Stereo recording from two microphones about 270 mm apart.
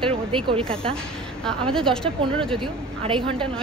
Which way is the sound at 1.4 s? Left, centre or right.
Centre.